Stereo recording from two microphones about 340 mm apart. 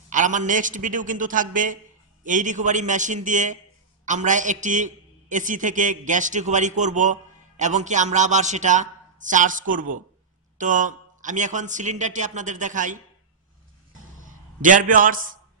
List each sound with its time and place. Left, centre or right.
0.1 s a man's voice: right
14.2 s a man's voice: right